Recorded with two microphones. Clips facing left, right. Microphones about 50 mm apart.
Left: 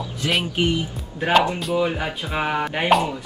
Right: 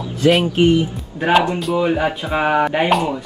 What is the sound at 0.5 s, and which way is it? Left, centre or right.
Speech, right.